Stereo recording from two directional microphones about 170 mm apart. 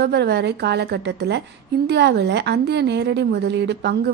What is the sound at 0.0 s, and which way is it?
A woman's voice, 80° right.